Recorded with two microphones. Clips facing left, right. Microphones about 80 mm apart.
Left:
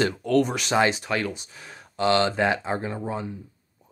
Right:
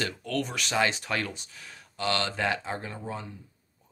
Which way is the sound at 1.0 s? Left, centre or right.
Centre.